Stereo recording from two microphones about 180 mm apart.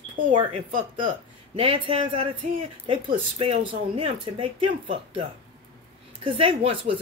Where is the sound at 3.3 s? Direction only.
35° right (ahead or behind).